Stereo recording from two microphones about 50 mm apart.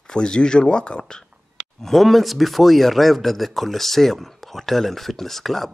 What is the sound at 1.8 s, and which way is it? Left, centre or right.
Speech, centre.